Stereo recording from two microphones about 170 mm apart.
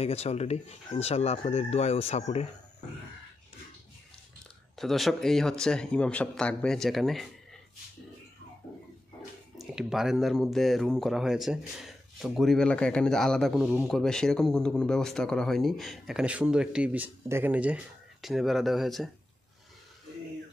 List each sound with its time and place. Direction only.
0.0 s speech: 40° left (ahead or behind)
4.7 s speech: centre (ahead or behind)
9.6 s speech: centre (ahead or behind)